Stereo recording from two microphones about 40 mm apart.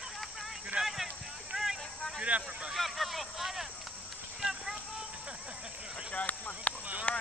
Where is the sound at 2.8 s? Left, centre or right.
Centre.